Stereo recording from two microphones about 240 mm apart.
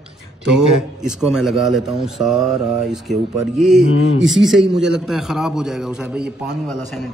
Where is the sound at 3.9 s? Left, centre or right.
Left.